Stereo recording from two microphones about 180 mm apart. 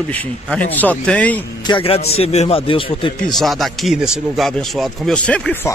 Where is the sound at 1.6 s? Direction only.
30° left (ahead or behind).